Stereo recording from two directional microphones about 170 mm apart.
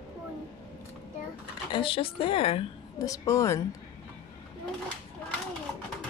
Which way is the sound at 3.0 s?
20° left (ahead or behind).